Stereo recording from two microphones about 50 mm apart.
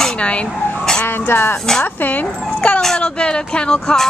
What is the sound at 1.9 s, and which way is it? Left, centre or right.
Speech, left.